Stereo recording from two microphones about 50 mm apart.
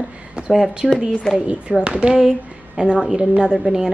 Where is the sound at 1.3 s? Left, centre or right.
Right.